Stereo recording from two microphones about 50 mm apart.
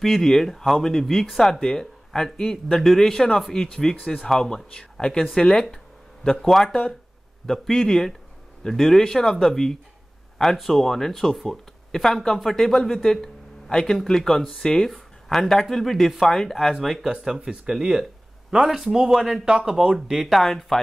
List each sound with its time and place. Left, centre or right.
0.0 s speech: centre
16.8 s speech: centre
19.4 s speech: centre
20.2 s speech: centre